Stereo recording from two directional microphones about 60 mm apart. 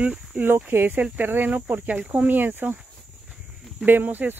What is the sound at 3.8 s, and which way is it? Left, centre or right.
Speech, right.